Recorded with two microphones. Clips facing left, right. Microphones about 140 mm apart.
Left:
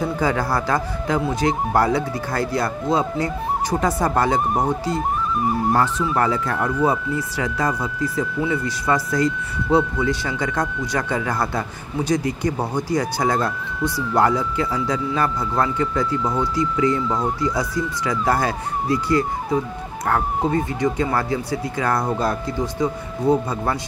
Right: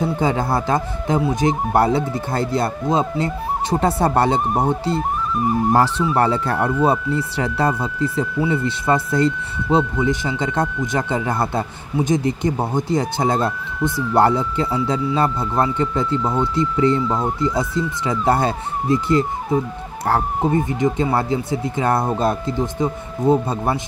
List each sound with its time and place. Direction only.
0.0 s speech: 20° right (ahead or behind)